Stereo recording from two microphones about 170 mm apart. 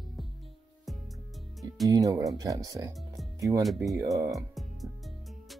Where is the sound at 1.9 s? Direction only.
20° right (ahead or behind).